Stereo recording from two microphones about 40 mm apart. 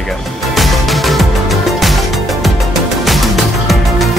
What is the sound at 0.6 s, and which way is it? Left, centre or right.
Music, centre.